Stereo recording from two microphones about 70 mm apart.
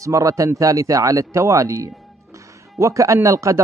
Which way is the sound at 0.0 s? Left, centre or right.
Right.